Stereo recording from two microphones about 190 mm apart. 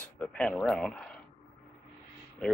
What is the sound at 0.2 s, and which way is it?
Speech, centre (ahead or behind).